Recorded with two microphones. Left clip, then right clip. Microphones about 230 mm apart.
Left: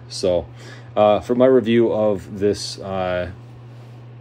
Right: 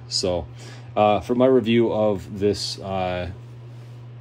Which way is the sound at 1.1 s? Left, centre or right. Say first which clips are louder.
Left 3 dB; right.